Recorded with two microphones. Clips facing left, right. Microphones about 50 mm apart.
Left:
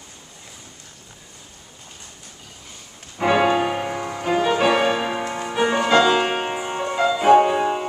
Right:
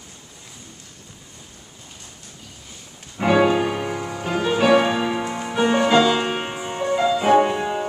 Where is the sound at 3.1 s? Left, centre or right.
Centre.